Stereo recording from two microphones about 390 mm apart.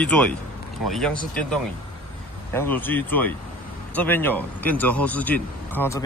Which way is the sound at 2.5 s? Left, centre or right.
Centre.